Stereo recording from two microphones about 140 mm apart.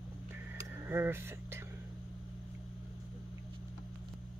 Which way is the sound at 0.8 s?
15° right (ahead or behind).